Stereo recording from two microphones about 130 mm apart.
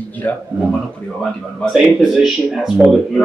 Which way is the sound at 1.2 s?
Centre (ahead or behind).